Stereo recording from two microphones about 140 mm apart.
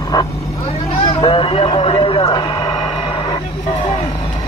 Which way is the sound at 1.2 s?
40° left (ahead or behind).